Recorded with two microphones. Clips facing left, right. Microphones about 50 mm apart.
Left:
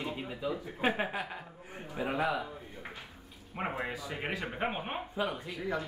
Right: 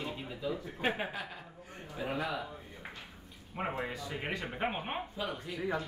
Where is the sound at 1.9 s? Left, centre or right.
Left.